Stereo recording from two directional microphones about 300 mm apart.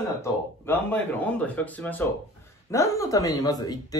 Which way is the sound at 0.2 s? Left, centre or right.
Centre.